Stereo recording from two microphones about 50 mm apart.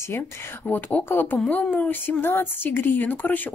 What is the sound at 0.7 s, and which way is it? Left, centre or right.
Speech, left.